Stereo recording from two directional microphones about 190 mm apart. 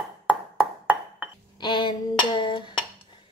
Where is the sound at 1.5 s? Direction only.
25° left (ahead or behind).